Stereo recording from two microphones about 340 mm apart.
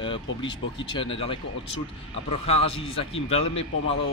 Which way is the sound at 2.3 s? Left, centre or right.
Centre.